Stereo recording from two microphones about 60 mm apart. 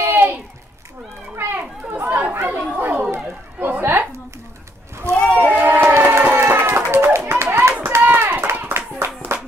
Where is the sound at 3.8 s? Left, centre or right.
Right.